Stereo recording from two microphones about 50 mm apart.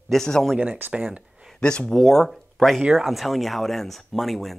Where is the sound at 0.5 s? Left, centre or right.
Right.